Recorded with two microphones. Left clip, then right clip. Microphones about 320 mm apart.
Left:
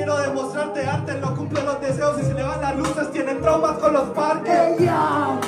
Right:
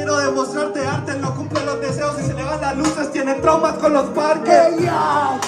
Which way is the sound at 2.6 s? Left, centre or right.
Right.